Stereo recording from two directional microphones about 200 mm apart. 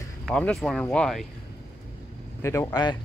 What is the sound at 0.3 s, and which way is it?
Speech, 5° left (ahead or behind).